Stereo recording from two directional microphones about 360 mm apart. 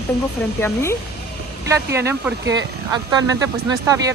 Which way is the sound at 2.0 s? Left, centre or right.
Centre.